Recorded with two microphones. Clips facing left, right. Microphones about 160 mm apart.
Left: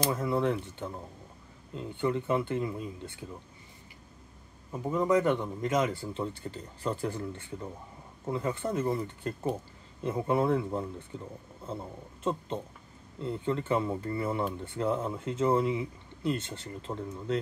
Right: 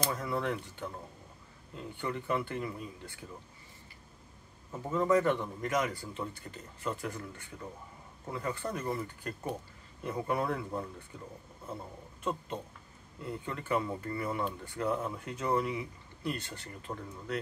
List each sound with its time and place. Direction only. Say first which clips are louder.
0.1 s speech: left 5 dB; 25° left (ahead or behind)
4.8 s speech: left 2 dB; 15° left (ahead or behind)